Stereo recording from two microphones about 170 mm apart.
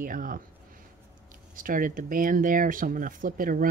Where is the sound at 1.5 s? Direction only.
55° right (ahead or behind).